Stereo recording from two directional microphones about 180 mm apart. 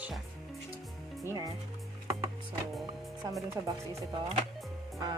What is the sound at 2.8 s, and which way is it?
Speech, 20° right (ahead or behind).